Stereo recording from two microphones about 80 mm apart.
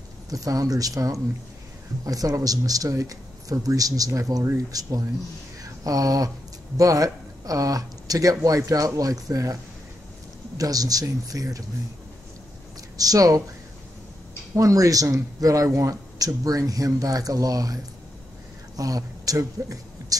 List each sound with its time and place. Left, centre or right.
0.3 s speech: right
10.6 s speech: right
12.9 s speech: right
14.5 s speech: right
18.8 s a woman's voice: right